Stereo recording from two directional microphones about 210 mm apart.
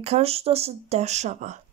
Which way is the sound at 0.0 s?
30° right (ahead or behind).